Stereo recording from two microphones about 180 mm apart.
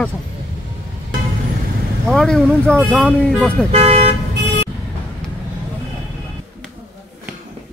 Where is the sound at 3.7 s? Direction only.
35° right (ahead or behind).